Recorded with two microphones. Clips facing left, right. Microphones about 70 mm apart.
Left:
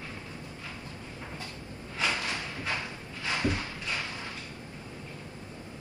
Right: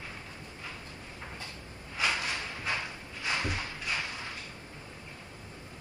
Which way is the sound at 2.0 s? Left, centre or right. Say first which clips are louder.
Even; centre.